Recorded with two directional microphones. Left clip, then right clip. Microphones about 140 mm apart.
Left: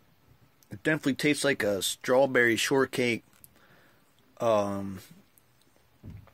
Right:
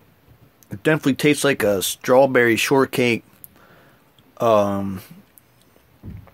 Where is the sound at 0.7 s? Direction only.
15° right (ahead or behind).